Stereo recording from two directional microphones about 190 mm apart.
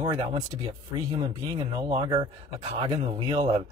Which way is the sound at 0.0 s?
30° right (ahead or behind).